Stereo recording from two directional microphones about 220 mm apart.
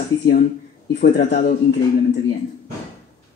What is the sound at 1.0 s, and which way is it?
Speech, 40° left (ahead or behind).